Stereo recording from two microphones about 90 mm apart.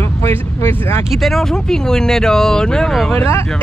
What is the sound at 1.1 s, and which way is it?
Speech, centre (ahead or behind).